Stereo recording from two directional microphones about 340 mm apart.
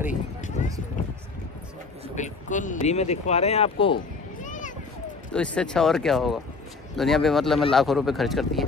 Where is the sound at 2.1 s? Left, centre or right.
Left.